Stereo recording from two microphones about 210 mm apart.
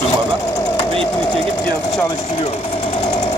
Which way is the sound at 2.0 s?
30° left (ahead or behind).